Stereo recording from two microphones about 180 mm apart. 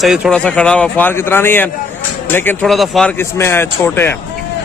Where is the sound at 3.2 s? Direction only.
15° left (ahead or behind).